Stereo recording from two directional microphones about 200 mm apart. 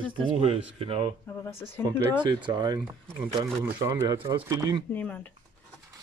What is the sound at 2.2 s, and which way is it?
Speech, 25° right (ahead or behind).